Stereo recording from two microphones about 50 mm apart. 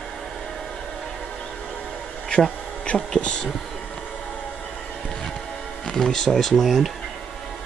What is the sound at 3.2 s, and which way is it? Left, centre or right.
Speech, left.